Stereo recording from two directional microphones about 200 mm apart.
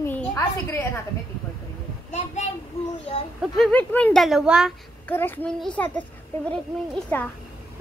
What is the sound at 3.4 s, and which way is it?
A child's voice, 5° left (ahead or behind).